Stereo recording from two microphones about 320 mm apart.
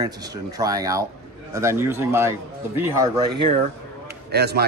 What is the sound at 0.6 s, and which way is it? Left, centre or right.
A man's voice, centre.